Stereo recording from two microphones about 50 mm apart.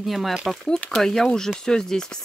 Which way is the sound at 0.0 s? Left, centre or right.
Centre.